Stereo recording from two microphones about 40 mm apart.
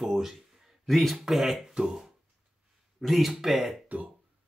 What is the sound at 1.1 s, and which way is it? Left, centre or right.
Speech, centre.